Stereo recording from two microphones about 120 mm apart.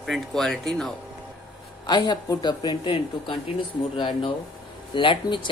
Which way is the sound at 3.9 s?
40° left (ahead or behind).